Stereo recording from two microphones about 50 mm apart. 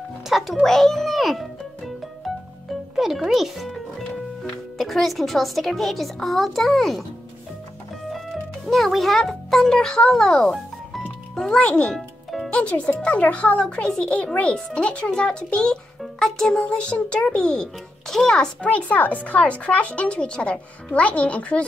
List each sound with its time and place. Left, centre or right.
0.3 s a child's voice: centre
0.6 s music: centre
4.7 s a child's voice: centre
8.6 s a child's voice: centre
10.5 s music: centre
11.4 s a child's voice: centre
11.9 s music: centre
12.4 s a child's voice: left
18.7 s a child's voice: left